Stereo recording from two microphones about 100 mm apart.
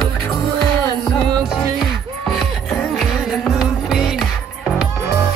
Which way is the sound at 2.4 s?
5° left (ahead or behind).